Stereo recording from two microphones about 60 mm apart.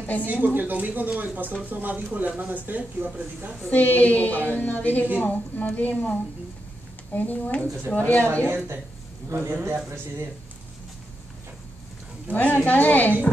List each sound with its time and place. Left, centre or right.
0.0 s speech: left
0.3 s speech: right
3.6 s a woman's voice: left
9.3 s a man's voice: right
12.3 s a woman's voice: left